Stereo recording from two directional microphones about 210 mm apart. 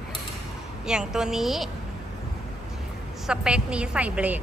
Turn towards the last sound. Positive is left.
turn(degrees=-5)  # may be behind; listen again after turning